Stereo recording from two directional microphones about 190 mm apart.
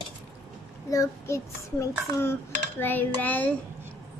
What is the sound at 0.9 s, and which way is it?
A child's voice, 15° left (ahead or behind).